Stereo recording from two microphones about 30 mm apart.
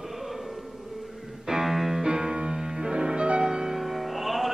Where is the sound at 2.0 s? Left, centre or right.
Centre.